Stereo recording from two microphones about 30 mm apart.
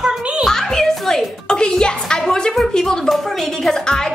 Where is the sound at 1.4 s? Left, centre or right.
Left.